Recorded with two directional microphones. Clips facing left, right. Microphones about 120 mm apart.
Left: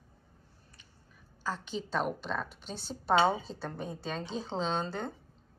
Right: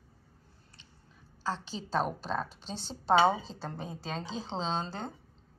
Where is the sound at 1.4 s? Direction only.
30° right (ahead or behind).